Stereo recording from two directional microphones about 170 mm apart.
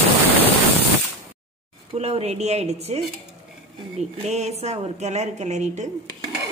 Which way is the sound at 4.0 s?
40° right (ahead or behind).